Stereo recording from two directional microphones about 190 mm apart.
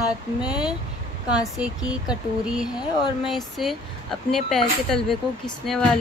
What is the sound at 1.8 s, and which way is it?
Speech, 5° right (ahead or behind).